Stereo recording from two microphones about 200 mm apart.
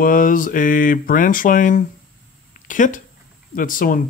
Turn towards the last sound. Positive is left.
turn(degrees=45)  # may be behind; listen again after turning